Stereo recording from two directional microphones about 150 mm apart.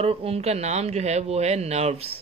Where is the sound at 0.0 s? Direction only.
40° right (ahead or behind).